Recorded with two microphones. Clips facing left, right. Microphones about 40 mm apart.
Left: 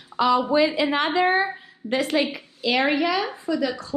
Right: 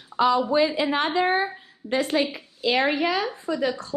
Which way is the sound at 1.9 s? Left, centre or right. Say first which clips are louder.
Left 1 dB; left.